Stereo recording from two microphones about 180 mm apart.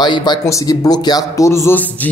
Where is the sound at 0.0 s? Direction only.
25° left (ahead or behind).